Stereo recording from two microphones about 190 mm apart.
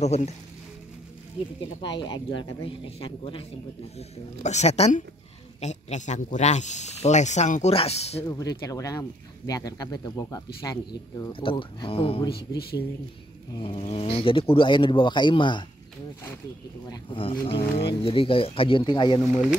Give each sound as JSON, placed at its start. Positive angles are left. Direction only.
{"t": 0.0, "sound": "speech", "side_deg": 35}
{"t": 1.8, "sound": "speech", "side_deg": 25}
{"t": 8.3, "sound": "speech", "side_deg": 20}
{"t": 12.3, "sound": "speech", "side_deg": 55}
{"t": 13.6, "sound": "speech", "side_deg": 30}
{"t": 16.9, "sound": "speech", "side_deg": 25}